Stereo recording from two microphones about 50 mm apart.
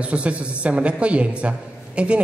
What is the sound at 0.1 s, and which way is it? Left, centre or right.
A man's voice, right.